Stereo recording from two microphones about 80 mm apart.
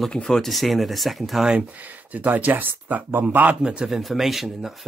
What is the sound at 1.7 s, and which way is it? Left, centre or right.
Speech, centre.